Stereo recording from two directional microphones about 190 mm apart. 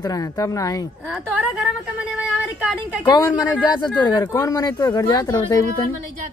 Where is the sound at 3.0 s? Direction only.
25° left (ahead or behind).